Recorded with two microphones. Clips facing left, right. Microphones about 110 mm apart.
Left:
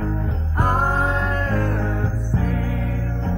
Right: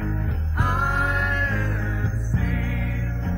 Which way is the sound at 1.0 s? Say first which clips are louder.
Left 3 dB; 30° left (ahead or behind).